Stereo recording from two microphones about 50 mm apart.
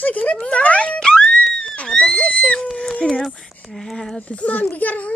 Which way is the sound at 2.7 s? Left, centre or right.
Centre.